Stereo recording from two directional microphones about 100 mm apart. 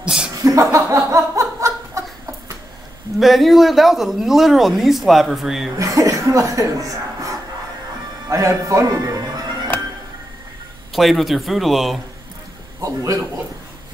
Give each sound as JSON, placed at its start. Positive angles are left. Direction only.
{"t": 0.0, "sound": "speech", "side_deg": -10}
{"t": 0.3, "sound": "speech", "side_deg": -35}
{"t": 0.9, "sound": "laughter", "side_deg": -30}
{"t": 3.2, "sound": "speech", "side_deg": 0}
{"t": 5.8, "sound": "a man's voice", "side_deg": -35}
{"t": 10.9, "sound": "speech", "side_deg": 0}
{"t": 12.8, "sound": "a man's voice", "side_deg": -35}